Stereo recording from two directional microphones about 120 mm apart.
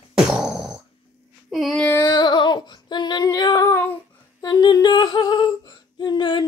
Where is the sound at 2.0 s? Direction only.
35° left (ahead or behind); by 4.0 s 20° left (ahead or behind).